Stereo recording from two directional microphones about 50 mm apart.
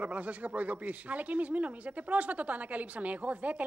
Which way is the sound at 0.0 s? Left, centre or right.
Right.